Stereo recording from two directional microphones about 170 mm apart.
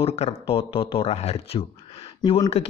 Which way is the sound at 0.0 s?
35° left (ahead or behind).